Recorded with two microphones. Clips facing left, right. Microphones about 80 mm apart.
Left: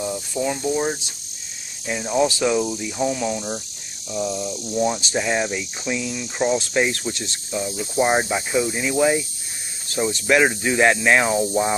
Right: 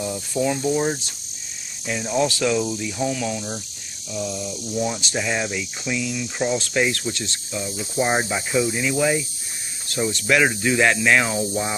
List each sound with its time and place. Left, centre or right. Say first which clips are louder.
0.3 s speech: right 3 dB; centre
1.9 s speech: left 2 dB; centre
4.1 s a sound: left 3 dB; left
4.7 s speech: left 3 dB; centre
6.2 s speech: left 6 dB; centre
7.2 s a sound: left 2 dB; left
7.6 s speech: left 3 dB; centre